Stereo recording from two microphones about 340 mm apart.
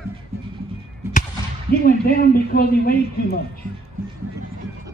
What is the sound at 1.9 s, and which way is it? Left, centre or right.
Speech, left.